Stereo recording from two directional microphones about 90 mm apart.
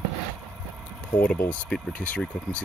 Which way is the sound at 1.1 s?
15° left (ahead or behind).